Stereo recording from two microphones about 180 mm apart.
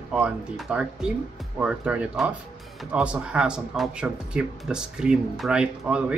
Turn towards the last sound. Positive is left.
turn(degrees=-5)  # may be behind; listen again after turning